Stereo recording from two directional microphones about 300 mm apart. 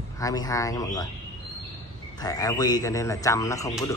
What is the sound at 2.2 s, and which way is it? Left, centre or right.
A man's voice, centre.